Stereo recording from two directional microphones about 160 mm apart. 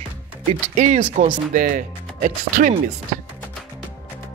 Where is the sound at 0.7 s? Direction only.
50° right (ahead or behind).